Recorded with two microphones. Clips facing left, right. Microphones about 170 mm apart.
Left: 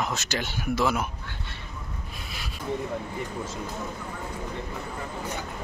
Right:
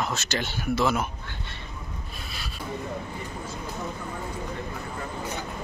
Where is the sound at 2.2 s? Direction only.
15° left (ahead or behind).